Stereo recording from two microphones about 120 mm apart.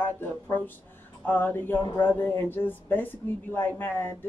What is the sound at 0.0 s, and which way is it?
Speech, 20° left (ahead or behind).